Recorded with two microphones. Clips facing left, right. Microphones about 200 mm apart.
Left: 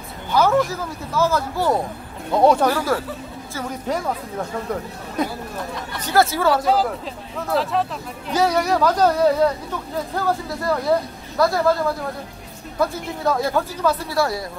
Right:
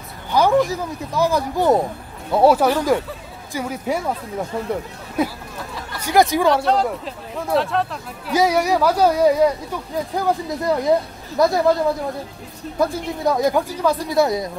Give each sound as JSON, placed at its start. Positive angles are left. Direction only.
{"t": 0.3, "sound": "speech", "side_deg": -15}
{"t": 2.3, "sound": "speech", "side_deg": -5}
{"t": 6.5, "sound": "speech", "side_deg": 5}
{"t": 13.2, "sound": "speech", "side_deg": -15}